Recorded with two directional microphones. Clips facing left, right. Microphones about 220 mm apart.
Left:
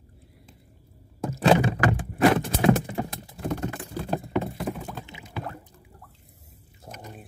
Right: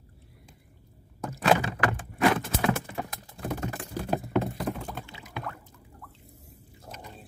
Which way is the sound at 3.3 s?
5° right (ahead or behind).